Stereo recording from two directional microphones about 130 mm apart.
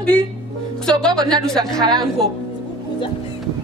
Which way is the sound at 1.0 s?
5° left (ahead or behind).